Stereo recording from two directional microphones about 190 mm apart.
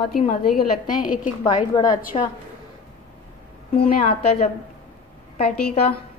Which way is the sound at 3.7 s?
30° left (ahead or behind).